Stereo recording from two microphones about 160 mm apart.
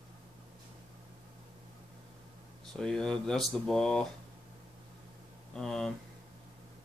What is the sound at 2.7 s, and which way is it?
Speech, 5° left (ahead or behind).